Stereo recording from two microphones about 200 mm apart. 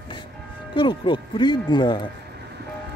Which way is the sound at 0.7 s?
25° left (ahead or behind).